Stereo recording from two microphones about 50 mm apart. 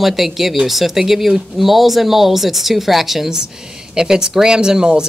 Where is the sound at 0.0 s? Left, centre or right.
Centre.